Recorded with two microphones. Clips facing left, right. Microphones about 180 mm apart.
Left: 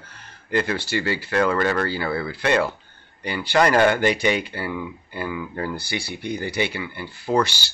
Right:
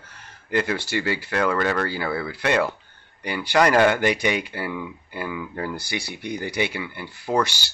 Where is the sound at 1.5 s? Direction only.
Centre (ahead or behind).